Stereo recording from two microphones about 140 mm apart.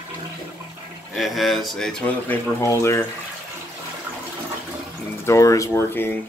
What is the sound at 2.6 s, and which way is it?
Speech, 20° left (ahead or behind).